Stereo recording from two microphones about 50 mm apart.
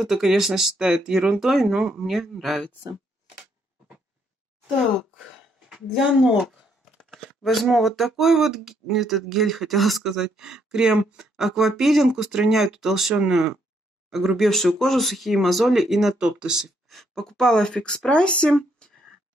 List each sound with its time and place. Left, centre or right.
0.0 s speech: centre
5.9 s speech: centre
11.3 s speech: centre
16.2 s speech: centre
16.9 s speech: centre